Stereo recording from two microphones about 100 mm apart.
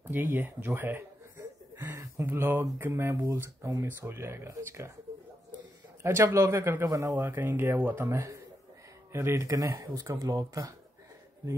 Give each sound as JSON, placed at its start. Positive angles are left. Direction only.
{"t": 0.1, "sound": "speech", "side_deg": -20}
{"t": 2.0, "sound": "a sound", "side_deg": -30}
{"t": 2.8, "sound": "speech", "side_deg": -25}
{"t": 6.0, "sound": "speech", "side_deg": -25}